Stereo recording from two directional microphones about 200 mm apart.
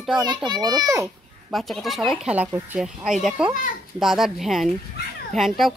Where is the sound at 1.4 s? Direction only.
Centre (ahead or behind).